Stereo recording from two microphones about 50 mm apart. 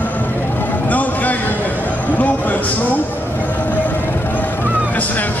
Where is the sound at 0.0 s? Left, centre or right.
Left.